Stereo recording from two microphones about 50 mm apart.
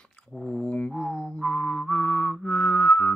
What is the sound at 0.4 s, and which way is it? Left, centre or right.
Music, left.